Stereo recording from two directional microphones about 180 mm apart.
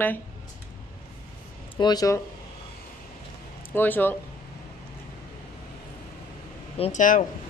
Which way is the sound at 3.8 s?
10° left (ahead or behind).